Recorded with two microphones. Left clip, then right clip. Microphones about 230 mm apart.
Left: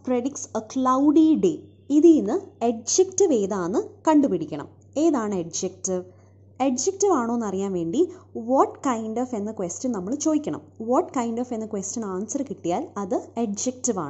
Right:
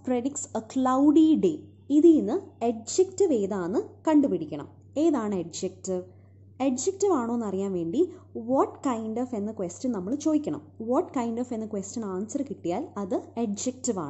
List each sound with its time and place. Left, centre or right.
0.0 s a woman's voice: centre